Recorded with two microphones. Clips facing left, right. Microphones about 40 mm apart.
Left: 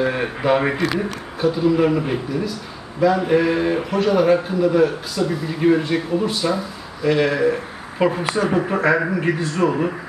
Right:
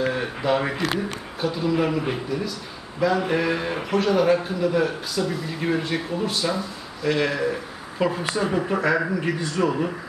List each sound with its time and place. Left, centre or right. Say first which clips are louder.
0.0 s speech: left 4 dB; centre
1.4 s speech: left 6 dB; centre
7.5 s a man's voice: left 4 dB; left
9.1 s a man's voice: left 4 dB; left
9.7 s a man's voice: left 4 dB; centre